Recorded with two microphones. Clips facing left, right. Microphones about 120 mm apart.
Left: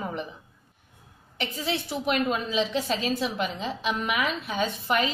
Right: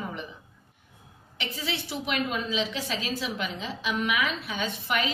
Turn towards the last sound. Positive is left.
turn(degrees=40)  # may be behind; listen again after turning